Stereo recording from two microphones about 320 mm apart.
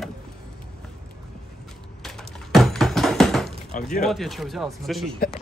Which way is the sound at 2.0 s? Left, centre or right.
Centre.